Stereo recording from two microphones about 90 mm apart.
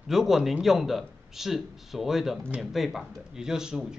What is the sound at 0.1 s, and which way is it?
Speech, 5° right (ahead or behind).